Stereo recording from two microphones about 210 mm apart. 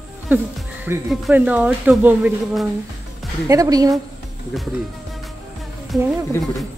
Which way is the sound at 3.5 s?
15° right (ahead or behind).